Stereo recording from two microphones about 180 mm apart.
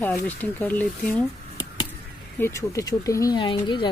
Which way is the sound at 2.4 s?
15° left (ahead or behind).